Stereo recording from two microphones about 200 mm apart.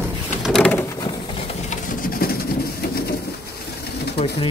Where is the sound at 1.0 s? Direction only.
30° left (ahead or behind); by 3.1 s 50° left (ahead or behind).